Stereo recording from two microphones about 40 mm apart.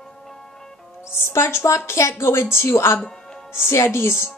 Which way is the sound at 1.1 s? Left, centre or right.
Left.